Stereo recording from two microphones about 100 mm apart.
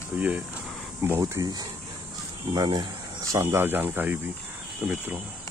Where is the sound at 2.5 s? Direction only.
45° right (ahead or behind).